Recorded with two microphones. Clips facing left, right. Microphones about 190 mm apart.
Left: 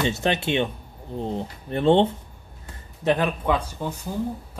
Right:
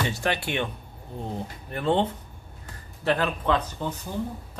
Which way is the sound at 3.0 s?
20° left (ahead or behind).